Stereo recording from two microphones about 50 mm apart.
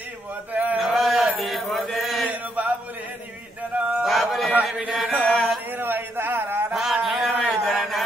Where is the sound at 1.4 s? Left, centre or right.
Centre.